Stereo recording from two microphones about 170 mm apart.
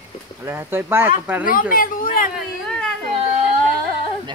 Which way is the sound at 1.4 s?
55° left (ahead or behind).